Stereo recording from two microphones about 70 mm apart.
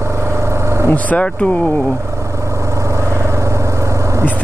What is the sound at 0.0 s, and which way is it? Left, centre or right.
Vehicle, right.